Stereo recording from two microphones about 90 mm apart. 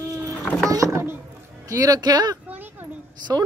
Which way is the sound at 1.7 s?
40° right (ahead or behind).